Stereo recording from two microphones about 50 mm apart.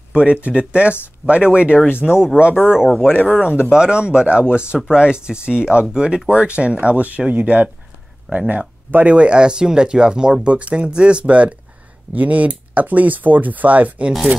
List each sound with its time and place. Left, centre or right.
0.1 s speech: right
2.0 s speech: centre
2.5 s speech: left
3.7 s speech: centre